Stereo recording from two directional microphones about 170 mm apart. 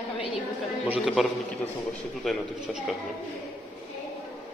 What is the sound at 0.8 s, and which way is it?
Speech, 5° right (ahead or behind).